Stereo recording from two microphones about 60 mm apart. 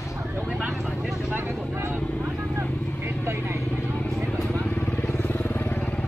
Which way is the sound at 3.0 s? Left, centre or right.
Right.